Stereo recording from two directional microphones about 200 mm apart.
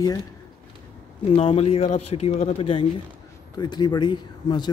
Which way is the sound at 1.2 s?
30° left (ahead or behind).